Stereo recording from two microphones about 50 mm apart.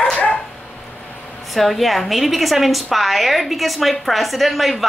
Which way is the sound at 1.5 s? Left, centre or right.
Centre.